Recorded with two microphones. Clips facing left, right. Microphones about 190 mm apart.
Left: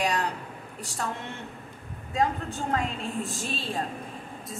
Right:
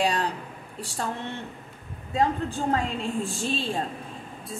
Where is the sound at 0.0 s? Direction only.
30° right (ahead or behind).